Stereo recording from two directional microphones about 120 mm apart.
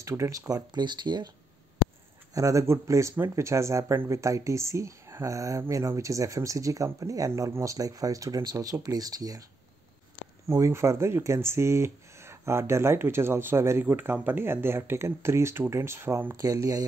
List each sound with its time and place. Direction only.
0.0 s speech: 25° right (ahead or behind)
2.3 s speech: 25° right (ahead or behind)
10.5 s speech: 25° right (ahead or behind)